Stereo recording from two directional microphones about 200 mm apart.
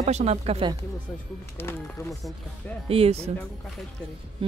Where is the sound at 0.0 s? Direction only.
35° right (ahead or behind).